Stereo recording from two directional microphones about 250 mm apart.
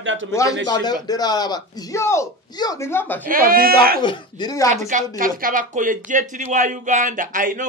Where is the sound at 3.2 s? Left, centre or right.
Right.